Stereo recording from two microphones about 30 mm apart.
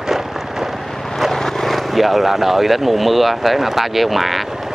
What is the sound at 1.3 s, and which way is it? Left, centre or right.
Vehicle, centre.